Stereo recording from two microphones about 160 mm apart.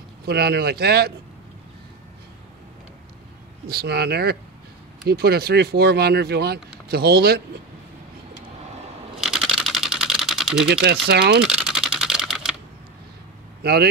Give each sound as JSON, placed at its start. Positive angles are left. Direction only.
{"t": 0.2, "sound": "speech", "side_deg": -90}
{"t": 3.6, "sound": "speech", "side_deg": -80}
{"t": 9.2, "sound": "typewriter", "side_deg": 0}
{"t": 10.7, "sound": "speech", "side_deg": -90}
{"t": 11.4, "sound": "typewriter", "side_deg": -5}
{"t": 13.6, "sound": "speech", "side_deg": -90}